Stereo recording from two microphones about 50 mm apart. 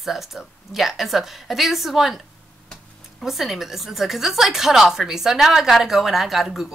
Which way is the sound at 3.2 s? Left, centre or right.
Centre.